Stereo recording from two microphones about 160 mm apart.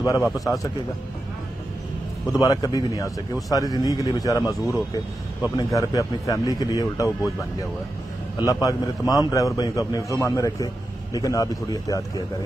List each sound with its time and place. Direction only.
0.0 s a man's voice: 20° left (ahead or behind)
2.3 s a man's voice: 25° left (ahead or behind)
8.4 s a man's voice: 20° left (ahead or behind)